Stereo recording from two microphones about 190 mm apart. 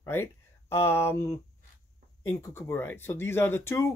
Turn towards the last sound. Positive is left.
turn(degrees=15)  # may be behind; listen again after turning